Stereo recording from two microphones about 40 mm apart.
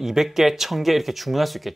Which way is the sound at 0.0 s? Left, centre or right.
Centre.